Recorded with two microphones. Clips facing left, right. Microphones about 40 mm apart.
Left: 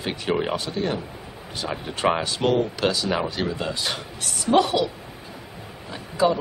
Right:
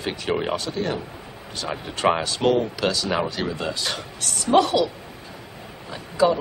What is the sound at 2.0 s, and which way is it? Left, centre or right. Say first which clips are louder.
Speech: right 1 dB; centre.